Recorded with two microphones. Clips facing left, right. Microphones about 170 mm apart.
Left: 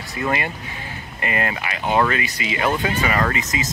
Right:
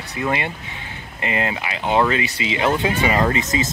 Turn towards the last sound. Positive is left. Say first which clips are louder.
# right 3 dB
turn(degrees=-30)  # may be behind; listen again after turning